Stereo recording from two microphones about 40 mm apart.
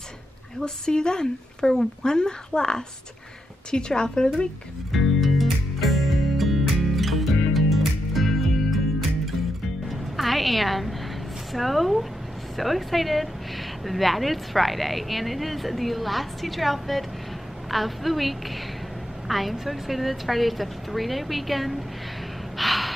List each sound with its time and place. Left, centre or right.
0.6 s speech: centre
4.9 s music: centre
11.5 s a woman's voice: centre
22.6 s gasp: centre